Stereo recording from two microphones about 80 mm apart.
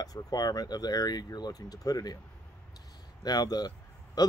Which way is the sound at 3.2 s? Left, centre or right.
Left.